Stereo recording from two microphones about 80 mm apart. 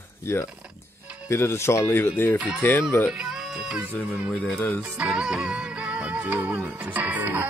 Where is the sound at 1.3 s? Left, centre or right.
Left.